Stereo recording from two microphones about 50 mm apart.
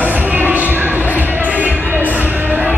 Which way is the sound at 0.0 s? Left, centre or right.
Right.